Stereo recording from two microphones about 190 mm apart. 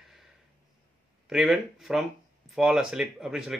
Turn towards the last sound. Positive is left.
turn(degrees=-5)  # may be behind; listen again after turning